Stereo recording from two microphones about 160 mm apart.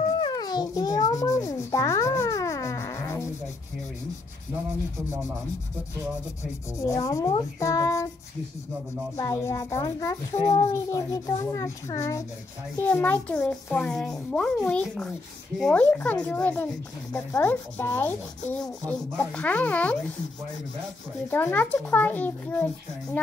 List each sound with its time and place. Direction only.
0.2 s rub: 25° left (ahead or behind)
6.8 s a child's voice: 20° left (ahead or behind)
9.1 s a child's voice: 20° left (ahead or behind)
21.3 s speech: 10° left (ahead or behind)